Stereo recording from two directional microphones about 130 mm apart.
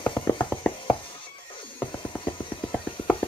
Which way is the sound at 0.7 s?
40° left (ahead or behind).